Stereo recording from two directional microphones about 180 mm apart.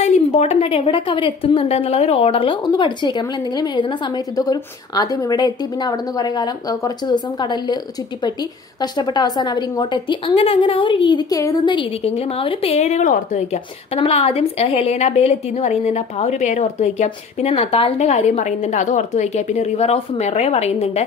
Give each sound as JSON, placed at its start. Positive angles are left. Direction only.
{"t": 0.0, "sound": "a woman's voice", "side_deg": 35}